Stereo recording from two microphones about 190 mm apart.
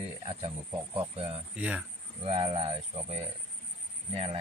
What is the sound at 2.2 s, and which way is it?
Speech, 30° right (ahead or behind).